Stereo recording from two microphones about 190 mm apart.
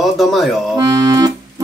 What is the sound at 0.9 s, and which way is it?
Music, 15° right (ahead or behind).